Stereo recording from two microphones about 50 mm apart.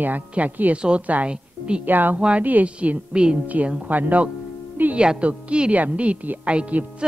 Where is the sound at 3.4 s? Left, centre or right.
Right.